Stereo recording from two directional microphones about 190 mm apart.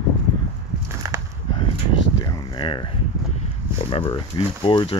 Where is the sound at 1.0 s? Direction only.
15° right (ahead or behind).